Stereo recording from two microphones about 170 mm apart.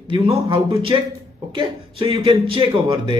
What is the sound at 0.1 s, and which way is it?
Speech, 30° right (ahead or behind).